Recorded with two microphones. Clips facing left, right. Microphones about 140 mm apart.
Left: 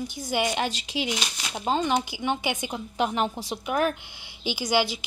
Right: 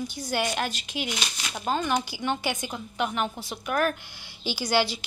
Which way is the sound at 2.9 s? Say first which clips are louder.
Left 3 dB; 30° left (ahead or behind).